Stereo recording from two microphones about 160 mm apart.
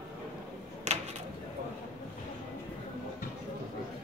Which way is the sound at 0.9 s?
45° right (ahead or behind).